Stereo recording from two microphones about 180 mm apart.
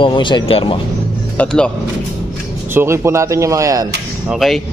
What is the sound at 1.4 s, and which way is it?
Speech, 5° left (ahead or behind).